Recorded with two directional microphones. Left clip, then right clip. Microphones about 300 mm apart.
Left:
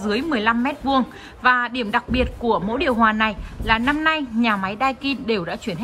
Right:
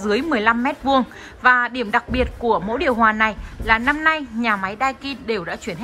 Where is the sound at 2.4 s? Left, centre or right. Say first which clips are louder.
Right 2 dB; centre.